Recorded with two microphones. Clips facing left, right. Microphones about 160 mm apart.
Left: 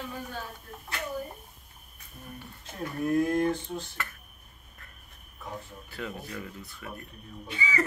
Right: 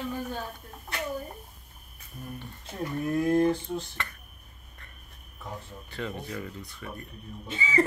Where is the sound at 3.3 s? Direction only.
15° right (ahead or behind).